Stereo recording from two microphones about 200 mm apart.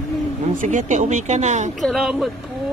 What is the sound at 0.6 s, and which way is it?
Speech, 40° right (ahead or behind).